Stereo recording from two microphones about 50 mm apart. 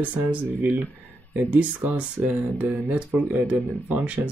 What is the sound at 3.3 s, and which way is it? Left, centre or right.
Speech, right.